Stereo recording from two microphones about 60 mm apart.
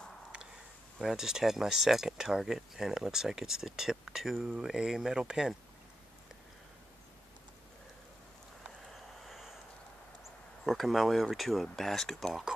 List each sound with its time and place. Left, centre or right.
0.9 s speech: centre
8.9 s a sound: centre
10.6 s speech: centre